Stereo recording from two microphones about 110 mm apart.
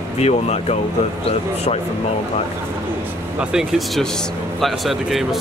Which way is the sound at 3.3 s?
5° right (ahead or behind).